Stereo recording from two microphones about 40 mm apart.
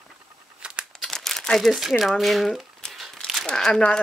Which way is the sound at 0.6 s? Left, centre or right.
Right.